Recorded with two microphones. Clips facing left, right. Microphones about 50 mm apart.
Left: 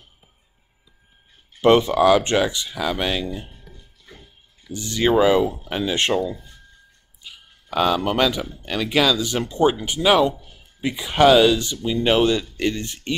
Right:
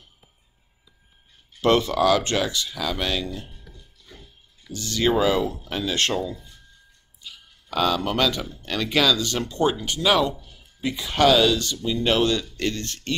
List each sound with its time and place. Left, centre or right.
1.6 s speech: left